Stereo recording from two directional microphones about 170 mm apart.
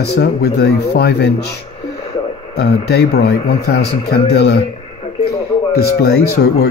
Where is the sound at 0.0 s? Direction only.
75° left (ahead or behind).